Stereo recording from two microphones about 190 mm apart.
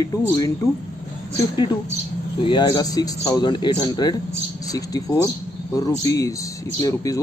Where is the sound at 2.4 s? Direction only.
25° left (ahead or behind).